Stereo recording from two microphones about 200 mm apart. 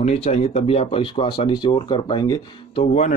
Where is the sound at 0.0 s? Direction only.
35° left (ahead or behind).